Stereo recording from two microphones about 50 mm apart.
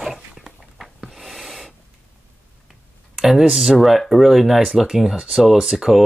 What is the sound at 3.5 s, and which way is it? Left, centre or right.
Speech, centre.